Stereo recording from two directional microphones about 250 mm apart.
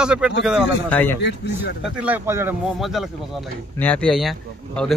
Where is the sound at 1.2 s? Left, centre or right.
Left.